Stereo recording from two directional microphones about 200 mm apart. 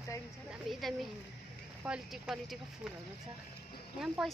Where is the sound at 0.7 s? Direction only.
Centre (ahead or behind).